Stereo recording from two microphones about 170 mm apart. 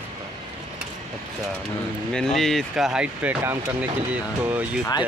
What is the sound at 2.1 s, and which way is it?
Speech, centre (ahead or behind).